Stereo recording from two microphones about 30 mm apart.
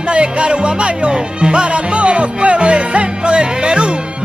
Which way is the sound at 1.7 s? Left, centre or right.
Right.